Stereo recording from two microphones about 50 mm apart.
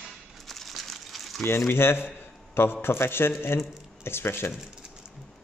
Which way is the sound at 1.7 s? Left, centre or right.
Left.